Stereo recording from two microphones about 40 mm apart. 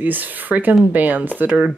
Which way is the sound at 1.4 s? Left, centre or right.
Right.